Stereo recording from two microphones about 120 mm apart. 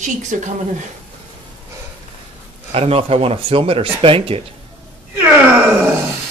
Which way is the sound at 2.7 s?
55° right (ahead or behind).